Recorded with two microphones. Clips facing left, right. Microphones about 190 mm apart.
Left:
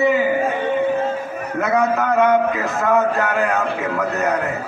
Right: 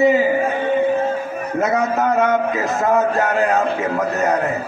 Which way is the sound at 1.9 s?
40° right (ahead or behind).